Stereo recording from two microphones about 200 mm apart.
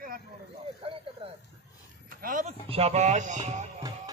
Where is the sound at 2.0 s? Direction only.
45° right (ahead or behind).